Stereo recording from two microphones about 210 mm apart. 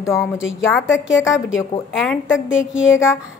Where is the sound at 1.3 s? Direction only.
5° right (ahead or behind).